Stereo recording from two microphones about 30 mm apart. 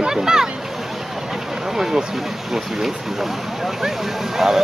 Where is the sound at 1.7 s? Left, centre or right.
Centre.